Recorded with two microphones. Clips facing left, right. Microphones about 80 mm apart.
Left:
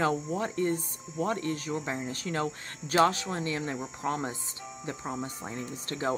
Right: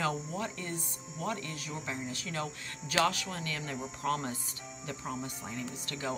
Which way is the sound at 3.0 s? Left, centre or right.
Left.